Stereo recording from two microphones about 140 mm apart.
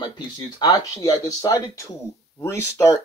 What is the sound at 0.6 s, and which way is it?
Speech, 25° left (ahead or behind).